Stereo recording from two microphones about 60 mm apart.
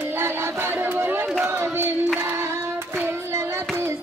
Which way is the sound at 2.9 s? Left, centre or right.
Right.